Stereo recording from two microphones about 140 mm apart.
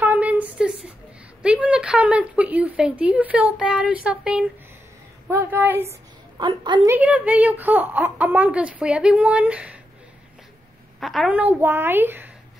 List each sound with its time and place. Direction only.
0.0 s a sound: 10° right (ahead or behind)
1.4 s speech: 5° right (ahead or behind)
6.3 s a woman's voice: 35° right (ahead or behind)
6.9 s speech: 10° right (ahead or behind)
11.0 s a woman's voice: centre (ahead or behind)
11.3 s speech: 15° right (ahead or behind)